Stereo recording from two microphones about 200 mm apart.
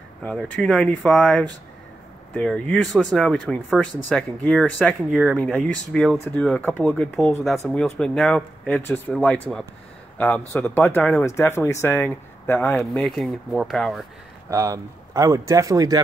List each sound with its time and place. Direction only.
0.2 s speech: 5° left (ahead or behind)
14.5 s speech: 15° right (ahead or behind)